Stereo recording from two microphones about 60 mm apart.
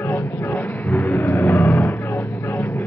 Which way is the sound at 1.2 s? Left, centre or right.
Left.